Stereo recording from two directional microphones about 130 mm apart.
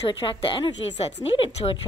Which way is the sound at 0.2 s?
40° left (ahead or behind).